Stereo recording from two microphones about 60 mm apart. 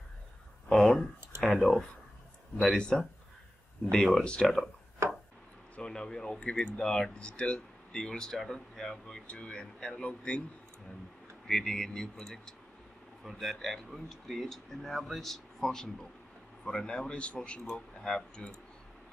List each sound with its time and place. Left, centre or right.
0.7 s a sound: centre
1.4 s speech: centre
5.0 s chopping: right
5.8 s speech: centre
11.4 s speech: centre